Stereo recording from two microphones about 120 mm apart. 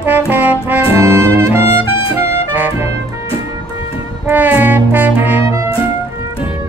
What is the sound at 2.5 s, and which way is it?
Music, 15° right (ahead or behind).